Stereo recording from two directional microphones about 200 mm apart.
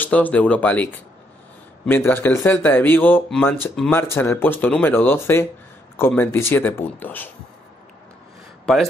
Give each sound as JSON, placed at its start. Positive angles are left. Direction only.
{"t": 0.0, "sound": "speech", "side_deg": 5}
{"t": 1.9, "sound": "speech", "side_deg": 10}
{"t": 8.7, "sound": "a man's voice", "side_deg": 5}